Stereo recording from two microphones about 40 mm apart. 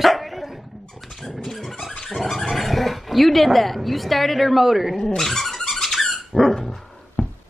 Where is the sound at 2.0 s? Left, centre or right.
Centre.